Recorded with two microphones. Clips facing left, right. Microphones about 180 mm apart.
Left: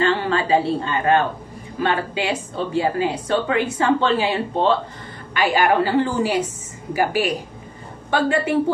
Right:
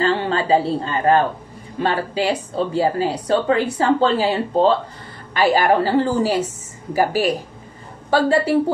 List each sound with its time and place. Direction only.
0.0 s a woman's voice: 30° right (ahead or behind)